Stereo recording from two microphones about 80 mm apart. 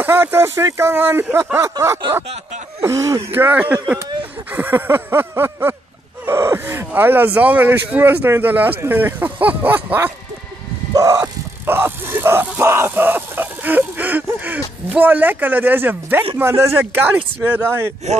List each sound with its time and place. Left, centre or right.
0.0 s speech: right
3.3 s speech: right
11.0 s vehicle: right
11.6 s speech: right